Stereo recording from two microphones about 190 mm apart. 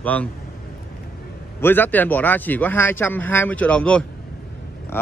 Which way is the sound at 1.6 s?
10° left (ahead or behind).